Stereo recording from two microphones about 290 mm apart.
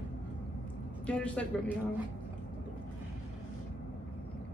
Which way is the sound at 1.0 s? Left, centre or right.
Centre.